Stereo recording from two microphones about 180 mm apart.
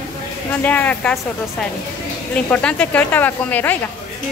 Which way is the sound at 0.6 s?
10° left (ahead or behind).